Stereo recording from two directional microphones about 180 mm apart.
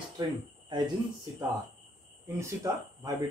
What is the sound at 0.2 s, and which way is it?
Speech, 25° right (ahead or behind).